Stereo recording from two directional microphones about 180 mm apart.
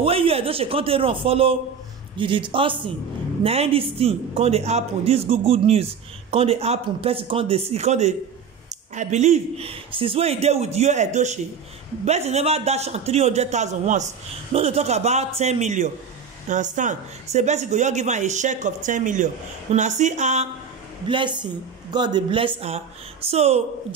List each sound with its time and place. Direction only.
0.0 s a man's voice: 30° right (ahead or behind)
21.1 s speech: 25° right (ahead or behind)